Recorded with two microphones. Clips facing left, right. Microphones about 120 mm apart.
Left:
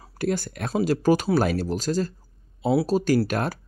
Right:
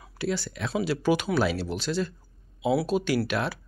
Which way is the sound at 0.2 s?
45° left (ahead or behind).